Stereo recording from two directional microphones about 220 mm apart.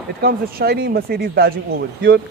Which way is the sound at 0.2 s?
45° right (ahead or behind).